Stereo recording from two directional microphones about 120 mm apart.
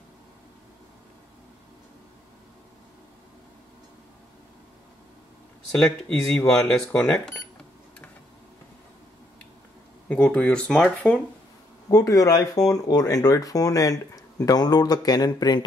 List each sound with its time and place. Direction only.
5.8 s speech: 10° left (ahead or behind)
10.0 s speech: 15° left (ahead or behind)
11.9 s speech: 30° left (ahead or behind)